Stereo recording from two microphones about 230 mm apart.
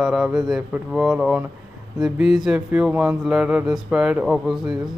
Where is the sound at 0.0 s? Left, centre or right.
Centre.